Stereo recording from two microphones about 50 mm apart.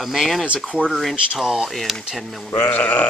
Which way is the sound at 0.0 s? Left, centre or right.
Centre.